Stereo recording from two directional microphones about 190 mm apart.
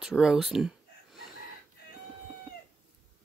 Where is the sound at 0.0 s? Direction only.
Centre (ahead or behind).